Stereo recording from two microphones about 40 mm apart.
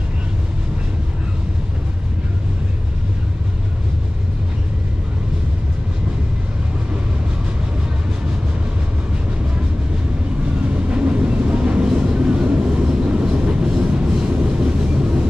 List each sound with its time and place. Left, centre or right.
10.7 s vehicle: right